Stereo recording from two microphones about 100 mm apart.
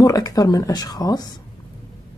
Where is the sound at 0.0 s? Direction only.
40° left (ahead or behind).